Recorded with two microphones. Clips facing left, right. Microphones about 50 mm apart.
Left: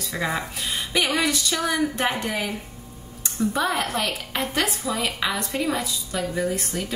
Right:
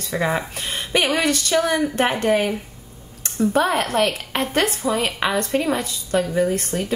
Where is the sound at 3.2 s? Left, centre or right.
Right.